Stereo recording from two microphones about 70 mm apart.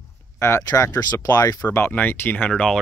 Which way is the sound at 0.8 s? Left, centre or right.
Left.